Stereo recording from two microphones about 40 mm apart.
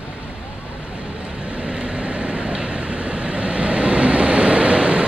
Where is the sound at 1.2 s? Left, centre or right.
Right.